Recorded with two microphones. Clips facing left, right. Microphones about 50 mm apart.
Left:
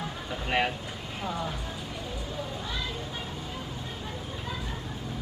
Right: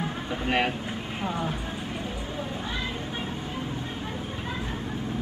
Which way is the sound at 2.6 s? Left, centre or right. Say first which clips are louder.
Right 3 dB; right.